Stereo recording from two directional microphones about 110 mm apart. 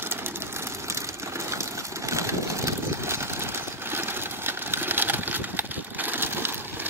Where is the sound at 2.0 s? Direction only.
25° right (ahead or behind).